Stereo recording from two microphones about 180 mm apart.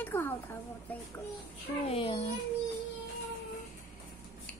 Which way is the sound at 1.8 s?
30° left (ahead or behind).